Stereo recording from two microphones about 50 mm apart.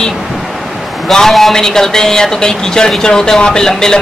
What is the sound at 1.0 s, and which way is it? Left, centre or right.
Speech, centre.